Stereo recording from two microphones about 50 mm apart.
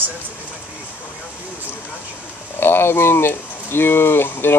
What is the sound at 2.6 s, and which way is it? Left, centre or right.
Speech, left.